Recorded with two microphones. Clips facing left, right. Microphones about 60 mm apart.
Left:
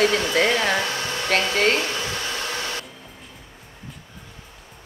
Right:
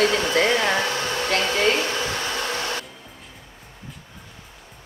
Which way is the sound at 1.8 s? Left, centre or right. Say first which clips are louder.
Right 2 dB; centre.